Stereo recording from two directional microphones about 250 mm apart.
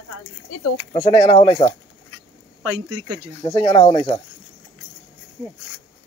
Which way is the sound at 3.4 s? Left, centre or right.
Centre.